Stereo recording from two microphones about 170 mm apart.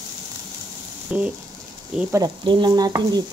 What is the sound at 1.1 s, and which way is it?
Speech, 5° right (ahead or behind).